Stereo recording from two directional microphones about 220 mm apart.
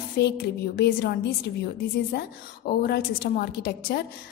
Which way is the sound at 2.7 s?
45° left (ahead or behind).